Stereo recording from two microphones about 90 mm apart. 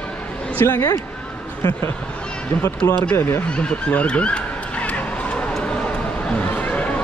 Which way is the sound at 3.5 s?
15° left (ahead or behind).